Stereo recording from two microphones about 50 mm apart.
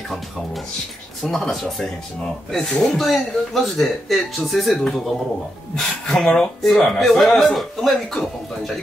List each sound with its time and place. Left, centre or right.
1.2 s speech: centre